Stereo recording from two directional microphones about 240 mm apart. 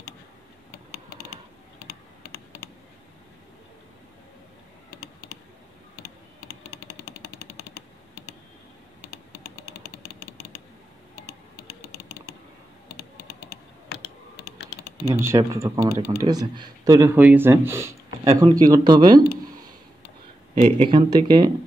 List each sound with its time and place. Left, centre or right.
1.9 s computer keyboard: left
6.0 s typing: left
15.0 s speech: centre
20.6 s speech: right